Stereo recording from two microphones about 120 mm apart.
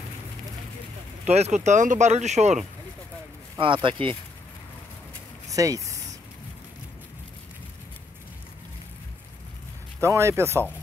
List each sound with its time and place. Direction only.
1.2 s speech: 65° right (ahead or behind)
3.5 s speech: 45° right (ahead or behind)
5.5 s speech: 30° right (ahead or behind)
9.9 s speech: 25° right (ahead or behind)